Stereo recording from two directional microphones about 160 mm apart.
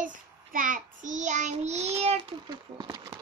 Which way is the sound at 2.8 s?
25° right (ahead or behind).